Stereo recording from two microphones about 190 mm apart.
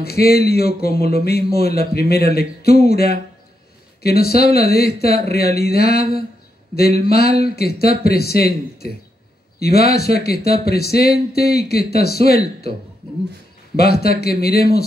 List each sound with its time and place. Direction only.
0.0 s speech: 55° left (ahead or behind)
9.6 s speech: 55° left (ahead or behind)
13.7 s speech: 55° left (ahead or behind)